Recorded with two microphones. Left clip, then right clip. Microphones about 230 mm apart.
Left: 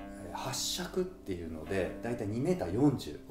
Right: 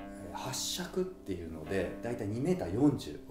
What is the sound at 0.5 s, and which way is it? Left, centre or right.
Speech, centre.